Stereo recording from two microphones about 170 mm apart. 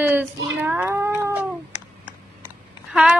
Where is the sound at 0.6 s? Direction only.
10° right (ahead or behind).